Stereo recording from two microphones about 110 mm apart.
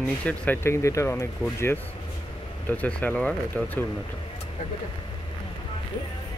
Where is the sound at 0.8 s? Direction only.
25° left (ahead or behind).